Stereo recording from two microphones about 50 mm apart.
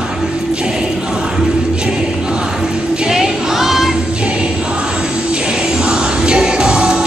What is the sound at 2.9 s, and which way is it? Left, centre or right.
Music, centre.